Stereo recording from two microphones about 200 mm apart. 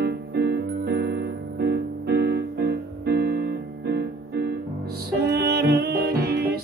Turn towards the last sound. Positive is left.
turn(degrees=-50)  # may be behind; listen again after turning